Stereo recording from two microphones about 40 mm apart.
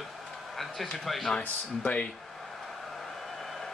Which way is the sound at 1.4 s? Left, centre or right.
Left.